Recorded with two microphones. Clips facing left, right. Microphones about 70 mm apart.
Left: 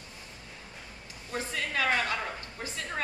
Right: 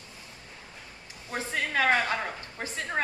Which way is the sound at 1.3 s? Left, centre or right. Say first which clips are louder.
Right 3 dB; right.